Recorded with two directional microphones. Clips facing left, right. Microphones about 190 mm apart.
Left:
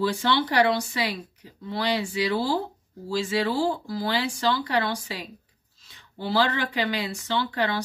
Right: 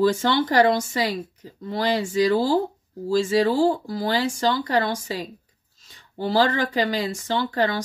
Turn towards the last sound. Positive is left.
turn(degrees=-45)  # may be behind; listen again after turning